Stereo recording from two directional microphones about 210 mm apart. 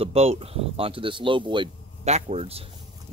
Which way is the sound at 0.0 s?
30° right (ahead or behind).